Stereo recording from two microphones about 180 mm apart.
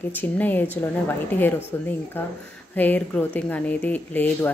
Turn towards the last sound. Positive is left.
turn(degrees=10)  # may be behind; listen again after turning